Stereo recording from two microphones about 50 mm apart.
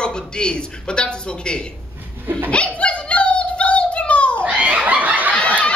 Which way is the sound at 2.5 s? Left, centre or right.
Left.